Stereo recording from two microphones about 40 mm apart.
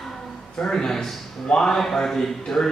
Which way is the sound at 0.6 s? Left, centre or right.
Centre.